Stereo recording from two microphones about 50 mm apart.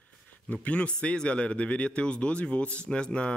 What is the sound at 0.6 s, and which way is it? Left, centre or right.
Speech, left.